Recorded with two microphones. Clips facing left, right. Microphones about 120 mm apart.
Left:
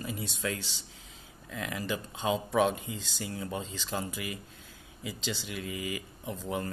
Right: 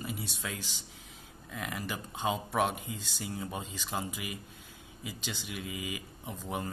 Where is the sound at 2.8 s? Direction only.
90° left.